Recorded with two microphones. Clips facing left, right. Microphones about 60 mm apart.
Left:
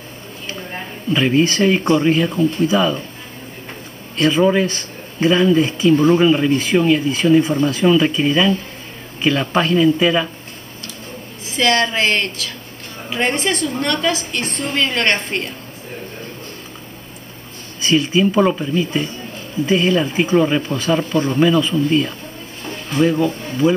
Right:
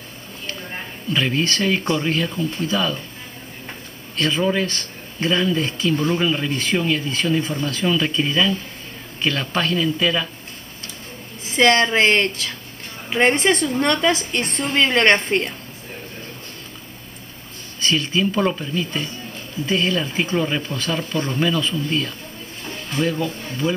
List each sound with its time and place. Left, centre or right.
1.1 s speech: centre
4.2 s speech: centre
11.5 s a woman's voice: right
17.7 s speech: centre